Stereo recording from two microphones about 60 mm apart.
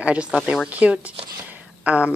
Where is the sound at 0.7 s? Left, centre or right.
Right.